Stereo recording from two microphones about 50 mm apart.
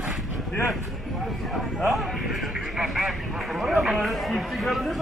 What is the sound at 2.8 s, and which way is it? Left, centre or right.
Speech, centre.